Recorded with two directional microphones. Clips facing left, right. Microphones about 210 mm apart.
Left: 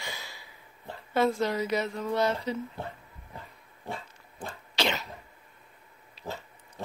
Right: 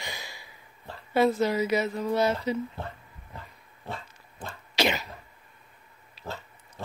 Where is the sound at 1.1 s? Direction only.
5° right (ahead or behind).